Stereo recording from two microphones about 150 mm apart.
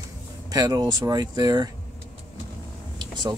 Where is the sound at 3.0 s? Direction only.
30° right (ahead or behind).